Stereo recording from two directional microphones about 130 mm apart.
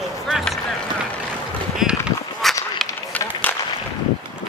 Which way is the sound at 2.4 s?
Centre (ahead or behind).